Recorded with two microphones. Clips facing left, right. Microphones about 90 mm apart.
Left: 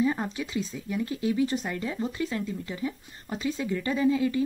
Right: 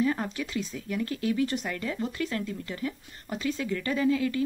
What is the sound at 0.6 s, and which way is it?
Speech, 25° left (ahead or behind).